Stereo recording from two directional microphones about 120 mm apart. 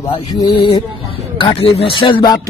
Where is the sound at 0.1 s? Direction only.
40° left (ahead or behind).